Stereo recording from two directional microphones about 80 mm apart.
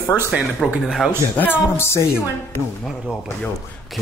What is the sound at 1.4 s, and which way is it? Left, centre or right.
Speech, left.